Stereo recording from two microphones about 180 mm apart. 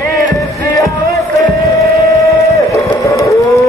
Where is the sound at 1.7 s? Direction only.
20° left (ahead or behind).